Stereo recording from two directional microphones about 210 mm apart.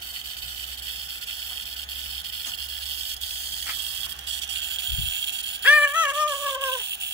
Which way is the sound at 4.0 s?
55° right (ahead or behind).